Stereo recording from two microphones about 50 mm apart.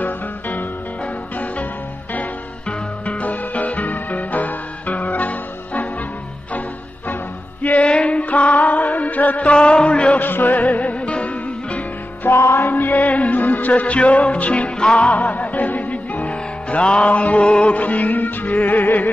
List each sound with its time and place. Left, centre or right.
0.0 s music: left
3.1 s music: left
7.6 s music: left
9.5 s music: centre
10.2 s music: left
12.5 s music: left